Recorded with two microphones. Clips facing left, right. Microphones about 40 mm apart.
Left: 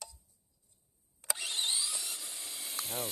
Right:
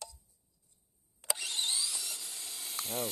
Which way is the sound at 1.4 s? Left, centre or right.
Centre.